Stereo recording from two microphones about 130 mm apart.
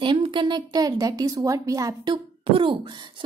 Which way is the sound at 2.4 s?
45° right (ahead or behind).